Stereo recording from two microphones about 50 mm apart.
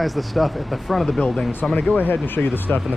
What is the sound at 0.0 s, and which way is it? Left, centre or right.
Speech, centre.